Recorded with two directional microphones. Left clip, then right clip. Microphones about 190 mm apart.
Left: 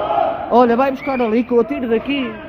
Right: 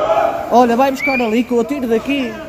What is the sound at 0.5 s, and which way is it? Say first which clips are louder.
A man's voice: right 1 dB; 30° left (ahead or behind).